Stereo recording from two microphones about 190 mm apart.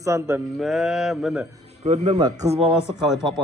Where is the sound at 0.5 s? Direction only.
Centre (ahead or behind).